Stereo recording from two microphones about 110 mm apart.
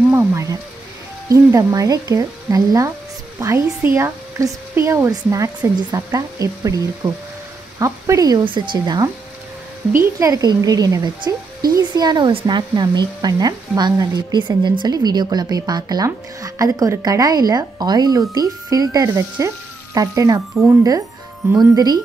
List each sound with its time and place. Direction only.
0.1 s speech: 20° right (ahead or behind)
8.5 s speech: 45° right (ahead or behind)
21.5 s speech: 35° right (ahead or behind)